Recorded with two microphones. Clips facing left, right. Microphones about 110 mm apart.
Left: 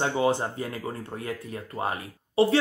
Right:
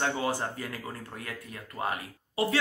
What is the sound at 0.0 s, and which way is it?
Speech, 20° left (ahead or behind).